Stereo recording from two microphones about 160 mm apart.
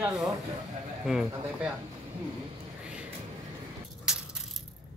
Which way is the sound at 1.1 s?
Centre (ahead or behind).